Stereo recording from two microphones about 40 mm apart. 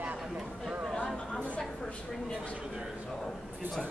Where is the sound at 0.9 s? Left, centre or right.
Left.